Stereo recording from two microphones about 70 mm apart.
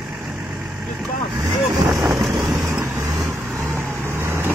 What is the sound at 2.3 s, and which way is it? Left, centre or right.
Vehicle, right.